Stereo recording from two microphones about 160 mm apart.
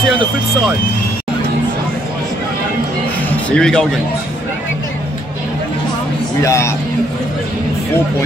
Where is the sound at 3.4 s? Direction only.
5° left (ahead or behind).